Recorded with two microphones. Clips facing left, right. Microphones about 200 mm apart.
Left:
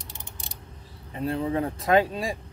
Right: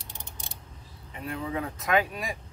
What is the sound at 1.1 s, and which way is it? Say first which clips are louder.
Speech: left 7 dB; 30° left (ahead or behind).